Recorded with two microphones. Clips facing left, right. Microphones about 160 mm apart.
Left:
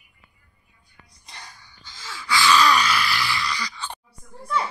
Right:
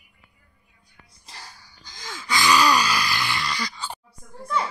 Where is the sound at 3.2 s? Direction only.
55° right (ahead or behind).